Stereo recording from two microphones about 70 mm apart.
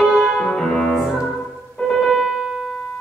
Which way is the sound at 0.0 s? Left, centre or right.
Centre.